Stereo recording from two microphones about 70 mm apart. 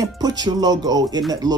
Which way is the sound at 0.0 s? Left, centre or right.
Right.